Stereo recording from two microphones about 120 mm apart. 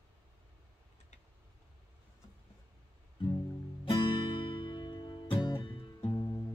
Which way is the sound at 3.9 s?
40° left (ahead or behind).